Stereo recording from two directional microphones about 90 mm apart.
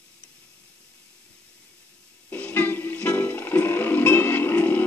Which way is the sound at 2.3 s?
20° left (ahead or behind).